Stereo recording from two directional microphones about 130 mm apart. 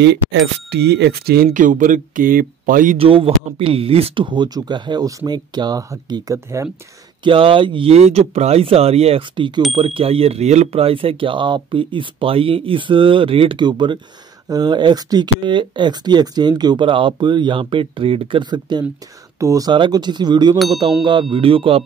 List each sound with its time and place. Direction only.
1.5 s speech: 90° right
3.0 s speech: 45° right (ahead or behind); by 6.7 s 20° right (ahead or behind)
7.2 s speech: 40° right (ahead or behind)